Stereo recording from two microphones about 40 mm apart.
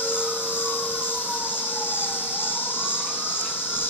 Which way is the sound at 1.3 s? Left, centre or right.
Right.